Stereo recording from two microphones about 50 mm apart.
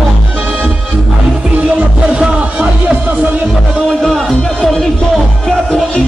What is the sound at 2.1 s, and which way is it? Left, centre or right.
Music, right.